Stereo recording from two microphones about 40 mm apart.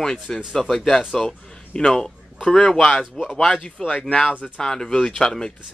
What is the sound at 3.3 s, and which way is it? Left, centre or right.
Speech, left.